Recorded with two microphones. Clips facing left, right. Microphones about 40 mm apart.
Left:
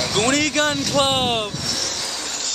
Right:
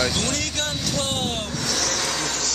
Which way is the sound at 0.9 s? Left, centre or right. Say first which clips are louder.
Left 7 dB; left.